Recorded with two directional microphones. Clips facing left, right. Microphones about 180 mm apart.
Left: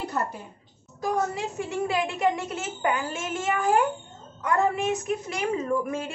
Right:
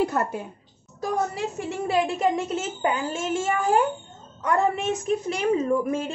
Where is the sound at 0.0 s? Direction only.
55° right (ahead or behind).